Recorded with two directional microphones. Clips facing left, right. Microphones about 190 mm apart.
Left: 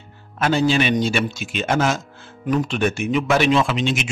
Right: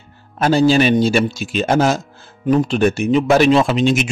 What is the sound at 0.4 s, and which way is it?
A man's voice, 35° right (ahead or behind).